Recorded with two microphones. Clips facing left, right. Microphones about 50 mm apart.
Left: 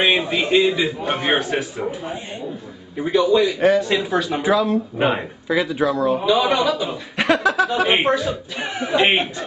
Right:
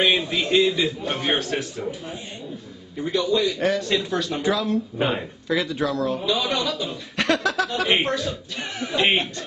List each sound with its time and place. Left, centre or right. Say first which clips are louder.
0.0 s speech: left 3 dB; centre